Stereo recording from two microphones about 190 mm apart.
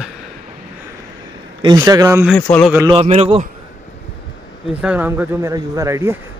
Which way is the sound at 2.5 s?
10° left (ahead or behind).